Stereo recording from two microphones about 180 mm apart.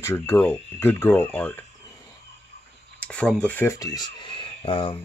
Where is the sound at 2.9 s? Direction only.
5° left (ahead or behind).